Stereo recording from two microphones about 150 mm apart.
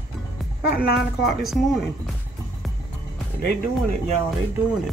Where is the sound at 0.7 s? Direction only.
85° left.